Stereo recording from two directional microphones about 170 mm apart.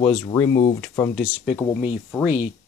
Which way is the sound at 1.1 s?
5° right (ahead or behind).